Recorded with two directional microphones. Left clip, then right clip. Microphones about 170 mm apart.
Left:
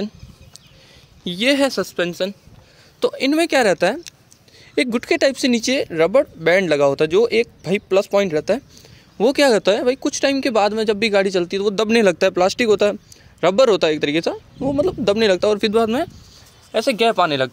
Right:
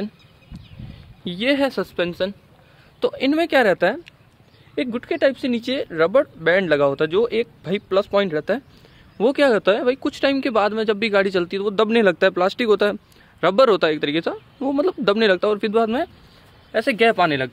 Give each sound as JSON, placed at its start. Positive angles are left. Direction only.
{"t": 1.2, "sound": "speech", "side_deg": 20}
{"t": 4.7, "sound": "speech", "side_deg": 40}
{"t": 14.6, "sound": "speech", "side_deg": 0}